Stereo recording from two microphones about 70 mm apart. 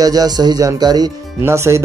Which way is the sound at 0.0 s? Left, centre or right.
Right.